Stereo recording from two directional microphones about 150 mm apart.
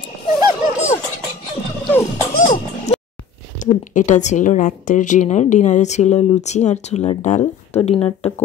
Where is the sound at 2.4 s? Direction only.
35° left (ahead or behind).